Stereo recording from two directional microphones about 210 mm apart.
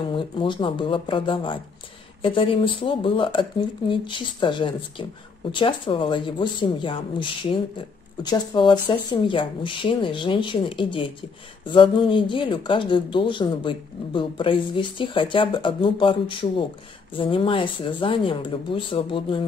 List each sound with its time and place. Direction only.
0.0 s speech: 25° left (ahead or behind)
8.3 s speech: 20° left (ahead or behind)